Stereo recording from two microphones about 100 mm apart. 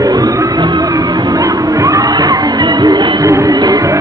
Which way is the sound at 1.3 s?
35° right (ahead or behind).